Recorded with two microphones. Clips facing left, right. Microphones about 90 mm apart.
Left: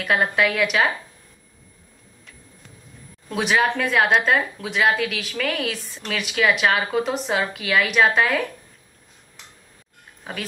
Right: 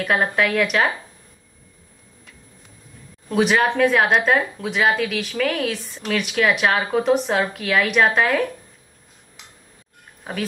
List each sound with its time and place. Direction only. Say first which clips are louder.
0.0 s speech: even; centre (ahead or behind)
3.3 s speech: right 3 dB; centre (ahead or behind)
10.3 s speech: right 3 dB; centre (ahead or behind)